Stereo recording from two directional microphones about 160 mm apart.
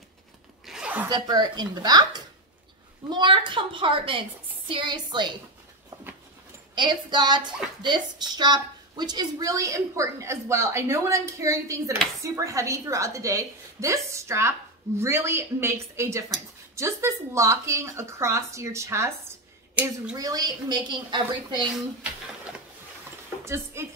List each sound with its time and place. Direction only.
0.7 s zipper: 5° right (ahead or behind)
1.0 s a woman's voice: 25° right (ahead or behind)
6.7 s a woman's voice: 30° right (ahead or behind); by 20.2 s 10° right (ahead or behind)
20.2 s a woman's voice: 25° right (ahead or behind)
23.4 s speech: 15° right (ahead or behind)